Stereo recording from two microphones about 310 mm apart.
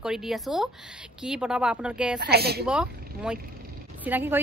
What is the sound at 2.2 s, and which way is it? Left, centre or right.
Speech, right.